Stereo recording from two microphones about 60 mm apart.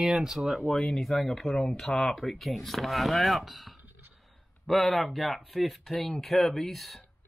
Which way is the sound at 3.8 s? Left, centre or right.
Right.